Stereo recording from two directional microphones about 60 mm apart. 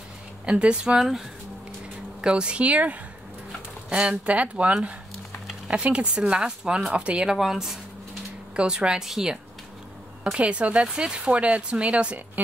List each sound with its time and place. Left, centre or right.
0.5 s speech: centre
2.2 s speech: centre
7.3 s speech: centre
10.3 s speech: right